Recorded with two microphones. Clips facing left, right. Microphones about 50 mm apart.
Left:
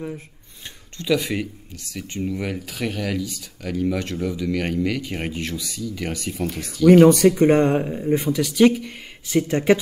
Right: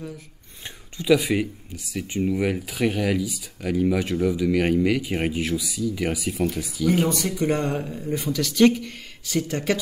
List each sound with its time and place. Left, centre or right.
0.9 s speech: centre
7.1 s speech: left
7.3 s speech: left; by 8.9 s centre
9.2 s speech: left